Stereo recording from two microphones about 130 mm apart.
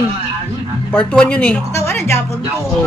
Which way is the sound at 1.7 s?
20° left (ahead or behind).